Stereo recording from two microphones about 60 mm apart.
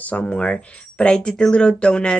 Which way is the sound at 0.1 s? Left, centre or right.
Left.